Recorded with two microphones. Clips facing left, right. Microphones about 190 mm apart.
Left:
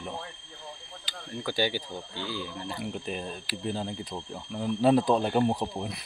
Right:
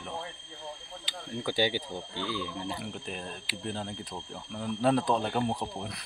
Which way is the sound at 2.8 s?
5° left (ahead or behind).